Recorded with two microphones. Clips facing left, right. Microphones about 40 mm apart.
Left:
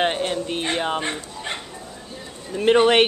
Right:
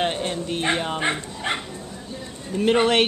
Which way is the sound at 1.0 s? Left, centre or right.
Right.